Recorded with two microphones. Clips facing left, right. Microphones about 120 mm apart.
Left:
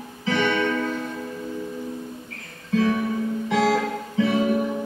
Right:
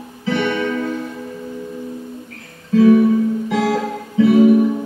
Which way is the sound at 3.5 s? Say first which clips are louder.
Right 2 dB; 15° right (ahead or behind).